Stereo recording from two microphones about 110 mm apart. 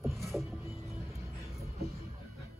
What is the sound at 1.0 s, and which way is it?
Music, 25° right (ahead or behind).